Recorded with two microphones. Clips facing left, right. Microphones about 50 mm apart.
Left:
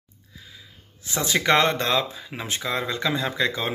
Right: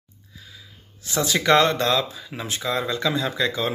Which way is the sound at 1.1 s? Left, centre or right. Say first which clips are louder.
Right 2 dB; left.